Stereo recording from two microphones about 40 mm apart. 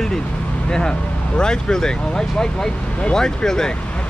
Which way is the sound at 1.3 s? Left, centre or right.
Left.